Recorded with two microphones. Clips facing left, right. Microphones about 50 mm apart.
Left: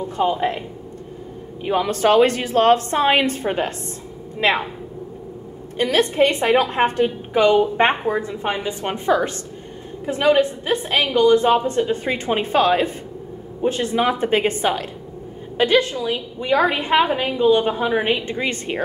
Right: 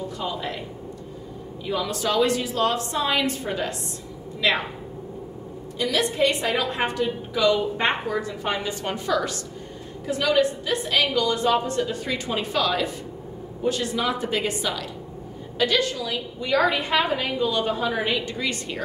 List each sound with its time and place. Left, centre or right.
0.2 s a woman's voice: left
1.6 s a woman's voice: left
5.8 s a woman's voice: left